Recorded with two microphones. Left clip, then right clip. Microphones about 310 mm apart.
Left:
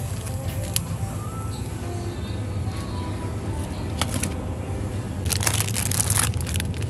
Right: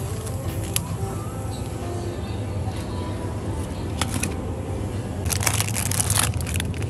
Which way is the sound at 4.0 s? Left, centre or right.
Centre.